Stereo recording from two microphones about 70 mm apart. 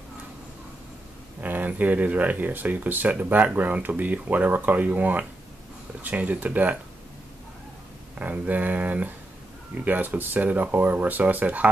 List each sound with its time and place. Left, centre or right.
1.4 s speech: right
8.2 s speech: right